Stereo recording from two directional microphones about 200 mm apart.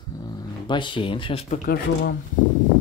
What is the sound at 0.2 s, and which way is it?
Speech, 20° left (ahead or behind).